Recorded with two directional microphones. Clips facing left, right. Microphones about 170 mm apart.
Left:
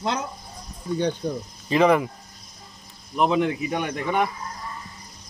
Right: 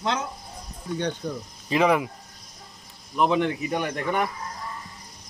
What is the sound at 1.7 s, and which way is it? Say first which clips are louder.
Speech: left 3 dB; centre (ahead or behind).